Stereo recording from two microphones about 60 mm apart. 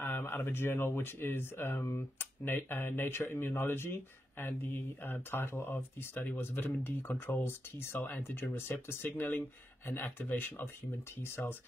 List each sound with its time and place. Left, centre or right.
0.0 s speech: left